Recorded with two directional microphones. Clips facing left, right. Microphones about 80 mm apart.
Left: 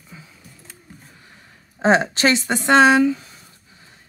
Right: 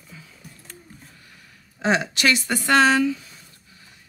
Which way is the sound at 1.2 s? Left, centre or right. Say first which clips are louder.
Left 2 dB; left.